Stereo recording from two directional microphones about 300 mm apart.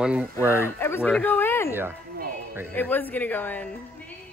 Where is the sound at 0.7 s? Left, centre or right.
Centre.